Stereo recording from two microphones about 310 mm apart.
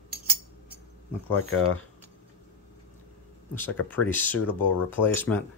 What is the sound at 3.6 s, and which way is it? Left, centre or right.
Speech, centre.